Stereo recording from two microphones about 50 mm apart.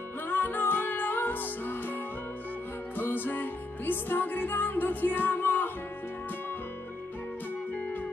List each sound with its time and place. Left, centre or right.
0.3 s music: left
3.0 s music: left